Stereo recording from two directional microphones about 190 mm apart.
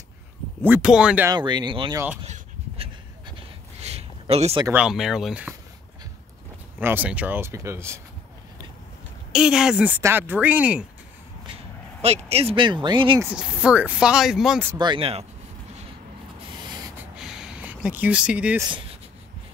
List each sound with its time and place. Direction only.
0.6 s speech: 10° right (ahead or behind)
1.3 s speech: 25° right (ahead or behind)
2.2 s a sound: 35° right (ahead or behind)
4.7 s speech: 5° right (ahead or behind)
6.8 s speech: 10° right (ahead or behind)
9.3 s speech: 5° right (ahead or behind)
12.0 s speech: 35° right (ahead or behind)
13.2 s speech: 5° right (ahead or behind)
14.7 s speech: 25° right (ahead or behind)
17.1 s a sound: 5° right (ahead or behind)